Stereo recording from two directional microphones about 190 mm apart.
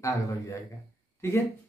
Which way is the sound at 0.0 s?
15° left (ahead or behind).